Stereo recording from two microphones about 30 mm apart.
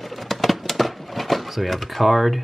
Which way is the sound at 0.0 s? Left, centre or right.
Centre.